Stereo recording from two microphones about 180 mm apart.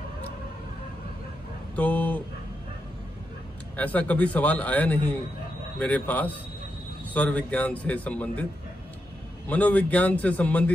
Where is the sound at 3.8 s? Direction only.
10° left (ahead or behind).